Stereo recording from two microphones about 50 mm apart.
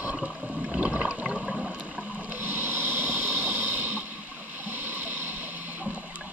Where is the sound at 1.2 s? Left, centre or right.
Right.